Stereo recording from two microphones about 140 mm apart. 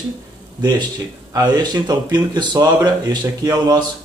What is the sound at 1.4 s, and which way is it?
A man's voice, 30° right (ahead or behind).